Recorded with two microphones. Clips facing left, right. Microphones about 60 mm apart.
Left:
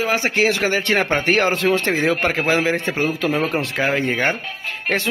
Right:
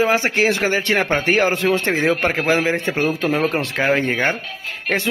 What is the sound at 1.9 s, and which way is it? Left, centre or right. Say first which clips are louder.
A man's voice: right 1 dB; right.